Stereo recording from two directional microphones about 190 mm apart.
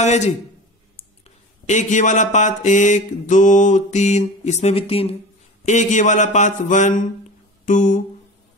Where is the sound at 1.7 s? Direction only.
40° left (ahead or behind).